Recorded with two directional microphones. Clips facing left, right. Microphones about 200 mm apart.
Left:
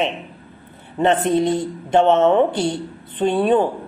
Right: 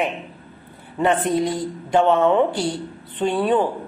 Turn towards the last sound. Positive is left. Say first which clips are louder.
# left 3 dB
turn(degrees=20)  # may be behind; listen again after turning